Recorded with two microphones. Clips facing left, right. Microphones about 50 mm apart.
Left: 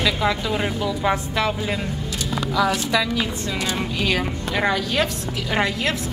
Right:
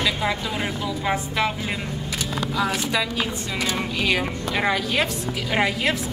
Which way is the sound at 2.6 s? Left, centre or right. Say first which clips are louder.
Left 4 dB; centre.